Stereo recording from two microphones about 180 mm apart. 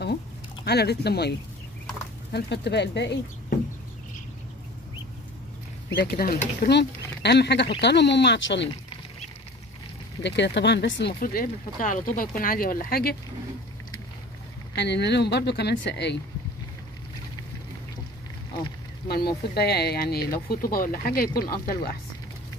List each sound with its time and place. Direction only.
0.7 s speech: 65° left (ahead or behind)
2.3 s speech: 70° left (ahead or behind)
5.9 s speech: 55° left (ahead or behind); by 8.6 s 80° left
10.2 s speech: 75° left (ahead or behind); by 13.1 s 55° left (ahead or behind)
14.8 s speech: 70° left (ahead or behind)
19.0 s speech: 60° left (ahead or behind)